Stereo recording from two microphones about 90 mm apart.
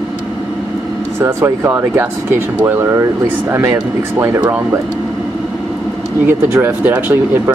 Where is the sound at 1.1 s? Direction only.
30° right (ahead or behind).